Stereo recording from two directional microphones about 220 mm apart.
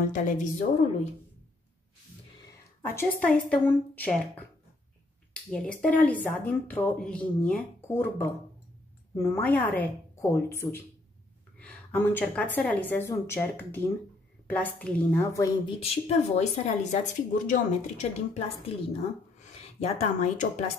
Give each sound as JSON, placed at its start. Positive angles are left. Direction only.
{"t": 0.1, "sound": "speech", "side_deg": 35}
{"t": 2.8, "sound": "speech", "side_deg": 10}
{"t": 15.8, "sound": "speech", "side_deg": 30}